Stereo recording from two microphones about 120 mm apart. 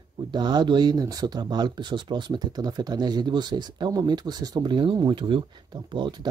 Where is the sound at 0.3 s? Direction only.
35° right (ahead or behind).